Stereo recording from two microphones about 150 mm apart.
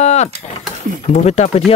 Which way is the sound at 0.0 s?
50° left (ahead or behind).